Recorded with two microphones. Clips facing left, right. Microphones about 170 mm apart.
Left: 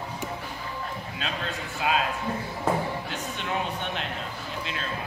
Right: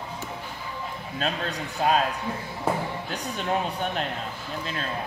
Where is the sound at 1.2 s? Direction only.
40° right (ahead or behind).